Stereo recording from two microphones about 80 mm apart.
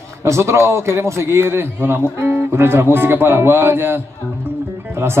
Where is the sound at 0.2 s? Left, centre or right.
Right.